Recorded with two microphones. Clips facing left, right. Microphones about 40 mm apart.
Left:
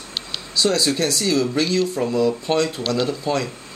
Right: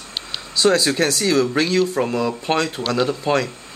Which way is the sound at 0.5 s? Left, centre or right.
Right.